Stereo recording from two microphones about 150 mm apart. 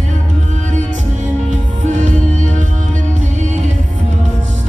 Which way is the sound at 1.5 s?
55° right (ahead or behind).